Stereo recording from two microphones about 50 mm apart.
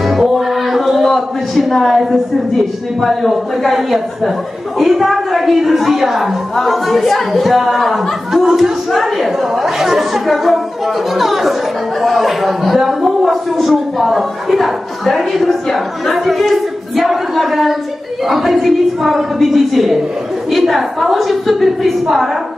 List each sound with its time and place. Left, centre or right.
0.0 s music: centre
3.0 s a woman's voice: centre